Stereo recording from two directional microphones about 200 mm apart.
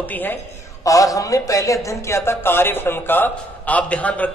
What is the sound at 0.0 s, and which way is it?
A man's voice, 10° left (ahead or behind).